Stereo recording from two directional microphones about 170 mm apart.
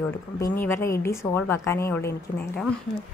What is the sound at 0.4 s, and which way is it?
A woman's voice, 15° left (ahead or behind).